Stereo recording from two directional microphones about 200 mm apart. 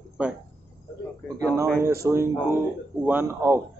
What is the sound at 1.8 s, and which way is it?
Speech, 15° right (ahead or behind).